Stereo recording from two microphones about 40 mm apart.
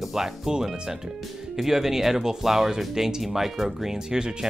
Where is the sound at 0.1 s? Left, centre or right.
Centre.